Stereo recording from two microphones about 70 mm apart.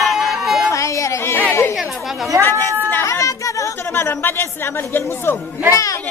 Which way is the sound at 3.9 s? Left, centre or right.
Left.